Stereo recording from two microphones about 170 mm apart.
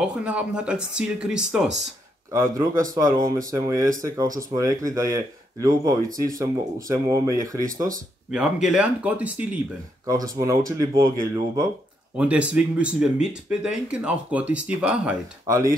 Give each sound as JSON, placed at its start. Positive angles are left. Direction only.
{"t": 0.0, "sound": "speech", "side_deg": -5}
{"t": 2.3, "sound": "speech", "side_deg": -20}
{"t": 8.3, "sound": "speech", "side_deg": -5}
{"t": 10.0, "sound": "speech", "side_deg": -20}
{"t": 12.2, "sound": "speech", "side_deg": -5}
{"t": 15.4, "sound": "speech", "side_deg": -20}